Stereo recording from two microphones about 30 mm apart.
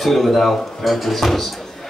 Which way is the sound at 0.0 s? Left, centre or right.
Centre.